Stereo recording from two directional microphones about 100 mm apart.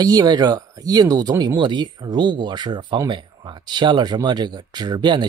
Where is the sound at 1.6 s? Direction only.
50° right (ahead or behind).